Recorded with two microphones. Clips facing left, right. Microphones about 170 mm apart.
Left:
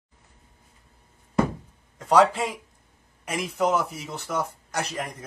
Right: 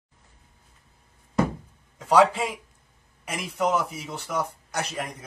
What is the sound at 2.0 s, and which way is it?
A man's voice, 5° right (ahead or behind).